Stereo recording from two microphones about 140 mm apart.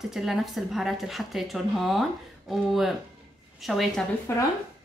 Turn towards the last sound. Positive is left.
turn(degrees=20)  # may be behind; listen again after turning